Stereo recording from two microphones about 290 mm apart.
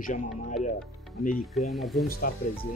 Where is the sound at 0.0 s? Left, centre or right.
Left.